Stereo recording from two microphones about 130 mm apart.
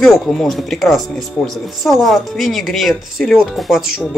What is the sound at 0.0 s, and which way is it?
Speech, centre (ahead or behind).